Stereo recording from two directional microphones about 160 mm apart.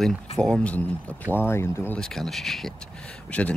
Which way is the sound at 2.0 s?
Centre (ahead or behind).